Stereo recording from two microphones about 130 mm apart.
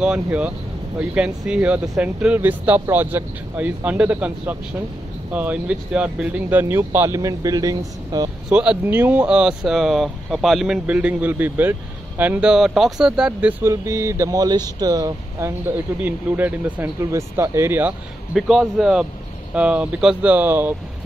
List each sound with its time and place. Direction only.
0.0 s speech: 10° right (ahead or behind); by 8.3 s 30° right (ahead or behind)
8.5 s speech: 10° right (ahead or behind); by 15.5 s 25° right (ahead or behind)
16.0 s speech: 15° right (ahead or behind)
17.0 s speech: 20° right (ahead or behind)
18.3 s a man's voice: centre (ahead or behind)